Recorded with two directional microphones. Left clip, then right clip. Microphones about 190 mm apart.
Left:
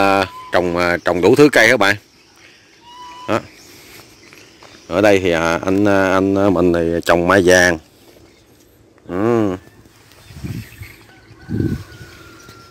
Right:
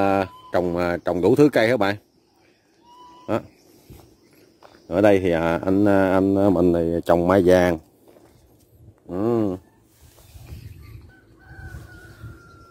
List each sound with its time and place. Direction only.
0.0 s a sound: 10° right (ahead or behind)
0.7 s speech: 10° right (ahead or behind)
4.8 s speech: 20° right (ahead or behind)
9.1 s livestock: centre (ahead or behind)